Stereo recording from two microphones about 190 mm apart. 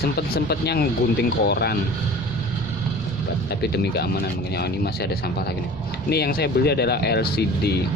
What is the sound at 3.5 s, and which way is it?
Speech, 60° left (ahead or behind).